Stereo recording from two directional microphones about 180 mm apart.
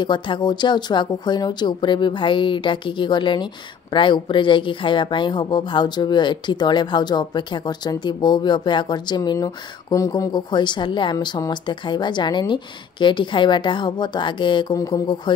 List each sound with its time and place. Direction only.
0.0 s a woman's voice: 25° left (ahead or behind)